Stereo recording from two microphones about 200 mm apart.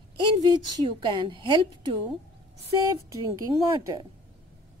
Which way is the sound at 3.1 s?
20° right (ahead or behind).